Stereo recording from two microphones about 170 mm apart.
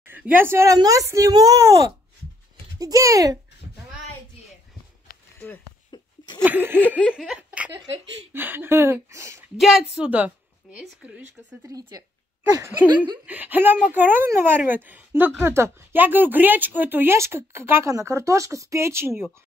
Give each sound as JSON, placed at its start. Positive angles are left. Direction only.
{"t": 0.0, "sound": "speech", "side_deg": -10}
{"t": 5.1, "sound": "a sound", "side_deg": 60}
{"t": 5.9, "sound": "a sound", "side_deg": 25}
{"t": 6.4, "sound": "speech", "side_deg": -10}
{"t": 7.0, "sound": "laughter", "side_deg": 5}
{"t": 8.3, "sound": "speech", "side_deg": -10}
{"t": 9.6, "sound": "speech", "side_deg": -5}
{"t": 11.6, "sound": "speech", "side_deg": -20}
{"t": 13.2, "sound": "speech", "side_deg": -10}